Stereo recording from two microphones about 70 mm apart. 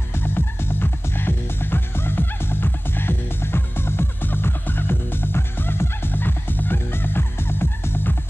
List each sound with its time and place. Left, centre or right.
0.1 s music: left